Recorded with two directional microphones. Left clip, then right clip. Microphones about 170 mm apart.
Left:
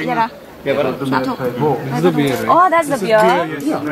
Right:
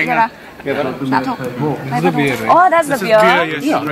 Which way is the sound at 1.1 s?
Centre (ahead or behind).